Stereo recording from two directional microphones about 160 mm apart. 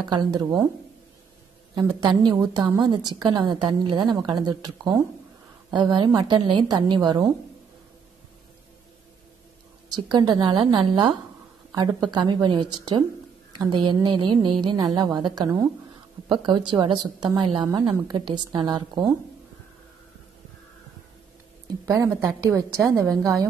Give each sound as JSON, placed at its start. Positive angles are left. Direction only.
{"t": 0.0, "sound": "a woman's voice", "side_deg": -25}
{"t": 1.8, "sound": "a woman's voice", "side_deg": -25}
{"t": 9.9, "sound": "a woman's voice", "side_deg": -30}
{"t": 21.6, "sound": "a woman's voice", "side_deg": -20}